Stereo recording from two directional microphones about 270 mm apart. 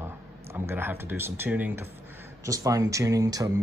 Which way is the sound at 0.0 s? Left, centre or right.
Centre.